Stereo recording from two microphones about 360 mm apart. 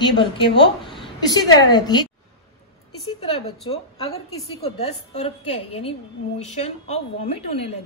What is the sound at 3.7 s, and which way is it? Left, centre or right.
A woman's voice, centre.